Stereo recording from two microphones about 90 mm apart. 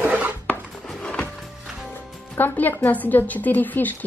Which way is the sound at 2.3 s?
20° left (ahead or behind).